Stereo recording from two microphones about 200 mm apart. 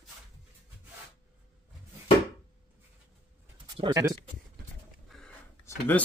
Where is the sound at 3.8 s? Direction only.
15° right (ahead or behind).